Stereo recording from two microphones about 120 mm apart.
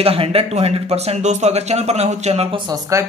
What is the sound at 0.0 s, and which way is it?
Speech, 55° right (ahead or behind).